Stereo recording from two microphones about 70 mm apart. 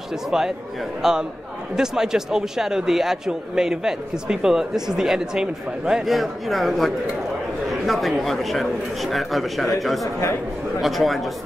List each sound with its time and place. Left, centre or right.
0.3 s a man's voice: centre